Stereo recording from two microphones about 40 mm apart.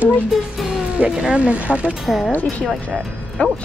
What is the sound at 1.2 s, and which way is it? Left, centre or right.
Speech, right.